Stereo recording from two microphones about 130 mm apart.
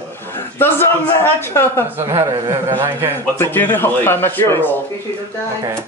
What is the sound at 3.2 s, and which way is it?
Speech, 15° left (ahead or behind).